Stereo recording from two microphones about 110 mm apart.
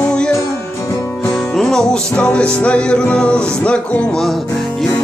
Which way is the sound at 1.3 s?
5° left (ahead or behind).